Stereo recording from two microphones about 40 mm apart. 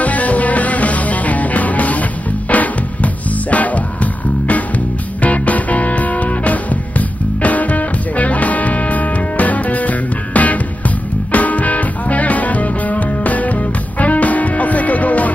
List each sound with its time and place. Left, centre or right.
0.0 s music: left